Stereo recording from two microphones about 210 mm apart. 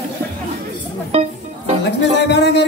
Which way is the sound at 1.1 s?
30° right (ahead or behind).